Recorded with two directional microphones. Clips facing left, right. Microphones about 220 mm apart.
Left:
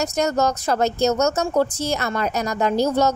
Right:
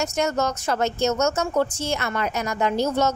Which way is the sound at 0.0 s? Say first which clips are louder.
Left 3 dB; 35° left (ahead or behind).